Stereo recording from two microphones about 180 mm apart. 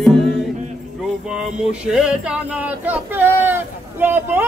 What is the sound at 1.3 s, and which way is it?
Male singing, 5° right (ahead or behind).